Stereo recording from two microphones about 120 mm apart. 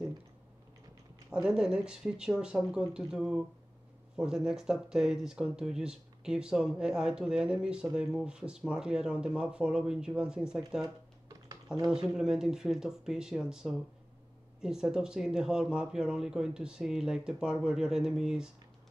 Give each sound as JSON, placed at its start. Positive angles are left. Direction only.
{"t": 1.3, "sound": "speech", "side_deg": -5}
{"t": 11.2, "sound": "typing", "side_deg": -35}
{"t": 11.9, "sound": "speech", "side_deg": -5}